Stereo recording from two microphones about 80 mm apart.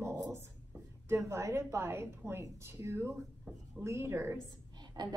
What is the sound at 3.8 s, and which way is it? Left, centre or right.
Speech, right.